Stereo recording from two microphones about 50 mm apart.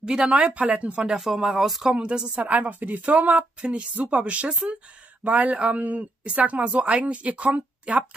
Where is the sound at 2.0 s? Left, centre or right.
Centre.